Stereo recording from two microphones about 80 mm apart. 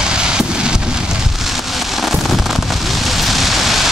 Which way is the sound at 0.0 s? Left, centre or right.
Centre.